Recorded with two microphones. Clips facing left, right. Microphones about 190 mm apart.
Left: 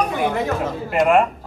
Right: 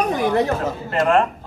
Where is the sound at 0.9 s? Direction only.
10° left (ahead or behind).